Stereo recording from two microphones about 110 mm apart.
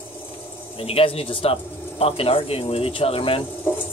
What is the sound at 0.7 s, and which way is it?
Speech, 60° left (ahead or behind).